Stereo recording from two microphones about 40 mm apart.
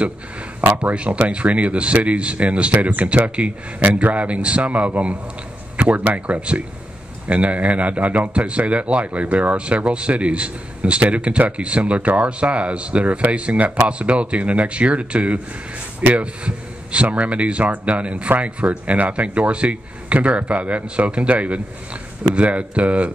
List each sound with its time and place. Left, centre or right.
0.6 s speech: right